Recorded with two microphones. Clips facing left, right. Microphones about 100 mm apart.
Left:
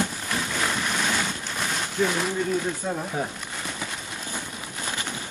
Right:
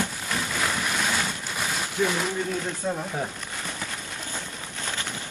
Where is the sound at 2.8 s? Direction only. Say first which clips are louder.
Right 1 dB; 10° left (ahead or behind).